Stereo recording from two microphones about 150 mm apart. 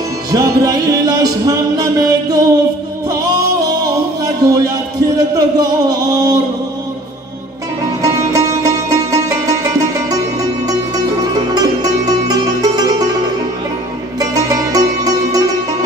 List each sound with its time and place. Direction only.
0.3 s music: 25° right (ahead or behind)
3.8 s music: 25° right (ahead or behind)
8.0 s music: 25° right (ahead or behind)
14.2 s music: 25° right (ahead or behind)